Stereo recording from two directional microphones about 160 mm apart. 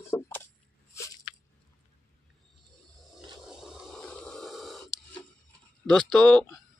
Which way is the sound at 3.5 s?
5° right (ahead or behind).